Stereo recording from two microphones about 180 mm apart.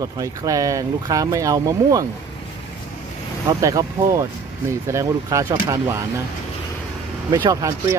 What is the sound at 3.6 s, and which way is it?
Speech, 15° right (ahead or behind).